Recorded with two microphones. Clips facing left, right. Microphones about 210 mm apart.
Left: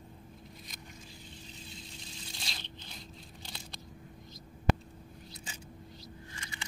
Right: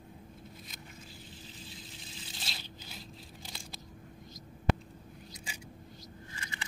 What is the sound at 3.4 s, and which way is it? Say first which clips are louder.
Scissors: left 1 dB; 5° right (ahead or behind).